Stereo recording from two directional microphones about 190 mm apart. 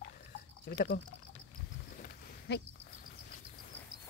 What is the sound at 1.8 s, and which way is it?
Sheep, 50° left (ahead or behind).